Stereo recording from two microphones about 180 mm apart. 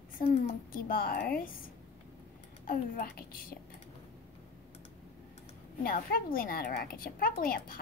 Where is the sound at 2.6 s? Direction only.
55° left (ahead or behind).